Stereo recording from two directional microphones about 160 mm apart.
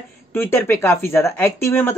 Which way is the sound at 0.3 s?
15° left (ahead or behind).